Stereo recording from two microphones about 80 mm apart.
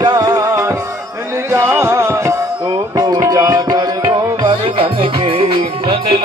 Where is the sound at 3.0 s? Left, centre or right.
Right.